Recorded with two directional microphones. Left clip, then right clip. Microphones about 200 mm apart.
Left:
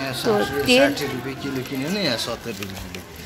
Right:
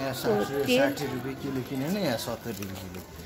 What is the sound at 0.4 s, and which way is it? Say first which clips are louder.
Speech: left 9 dB; 15° left (ahead or behind).